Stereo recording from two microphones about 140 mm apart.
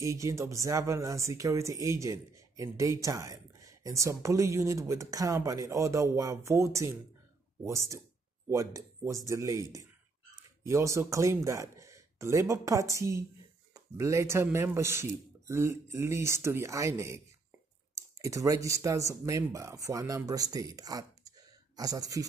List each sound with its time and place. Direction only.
0.0 s speech: 20° right (ahead or behind)